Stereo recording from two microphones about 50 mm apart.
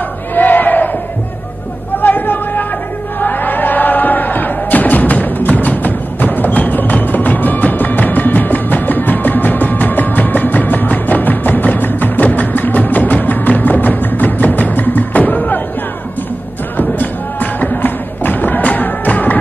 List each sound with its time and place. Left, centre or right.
0.3 s crowd: left
2.0 s a sound: left
3.2 s music: left
16.7 s music: left